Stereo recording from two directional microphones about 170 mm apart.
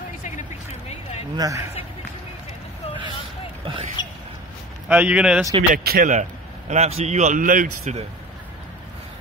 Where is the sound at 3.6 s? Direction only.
30° right (ahead or behind).